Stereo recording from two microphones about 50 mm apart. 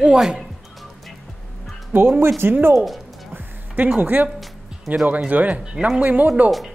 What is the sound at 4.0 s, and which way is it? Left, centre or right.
Speech, right.